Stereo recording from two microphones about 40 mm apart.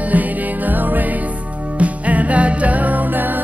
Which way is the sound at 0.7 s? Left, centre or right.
Right.